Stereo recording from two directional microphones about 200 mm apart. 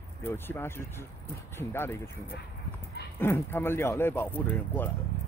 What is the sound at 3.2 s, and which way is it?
Speech, 10° left (ahead or behind).